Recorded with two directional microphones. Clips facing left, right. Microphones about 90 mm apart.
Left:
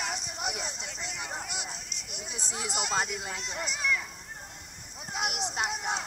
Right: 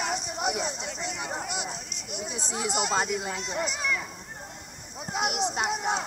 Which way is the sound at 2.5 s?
20° right (ahead or behind).